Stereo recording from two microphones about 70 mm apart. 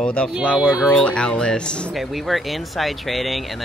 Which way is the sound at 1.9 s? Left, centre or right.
Centre.